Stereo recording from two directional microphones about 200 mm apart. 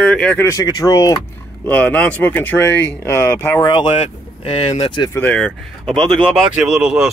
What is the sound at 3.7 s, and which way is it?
Speech, 25° left (ahead or behind).